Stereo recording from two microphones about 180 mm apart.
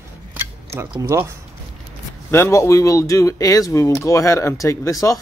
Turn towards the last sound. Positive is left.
turn(degrees=20)  # may be behind; listen again after turning